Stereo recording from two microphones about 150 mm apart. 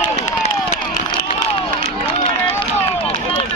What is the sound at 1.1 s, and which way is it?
Run, 35° left (ahead or behind).